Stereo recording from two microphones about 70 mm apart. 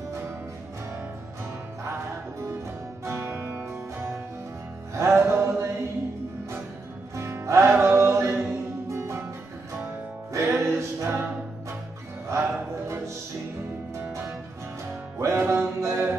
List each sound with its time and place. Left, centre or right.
3.1 s music: right
4.9 s music: right
7.2 s music: right
10.3 s music: right
12.3 s music: right
15.1 s music: right